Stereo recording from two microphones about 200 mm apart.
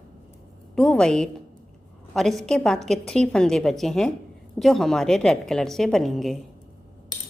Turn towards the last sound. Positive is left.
turn(degrees=0)  # may be behind; listen again after turning